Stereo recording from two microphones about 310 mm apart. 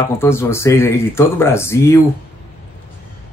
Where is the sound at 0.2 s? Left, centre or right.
Centre.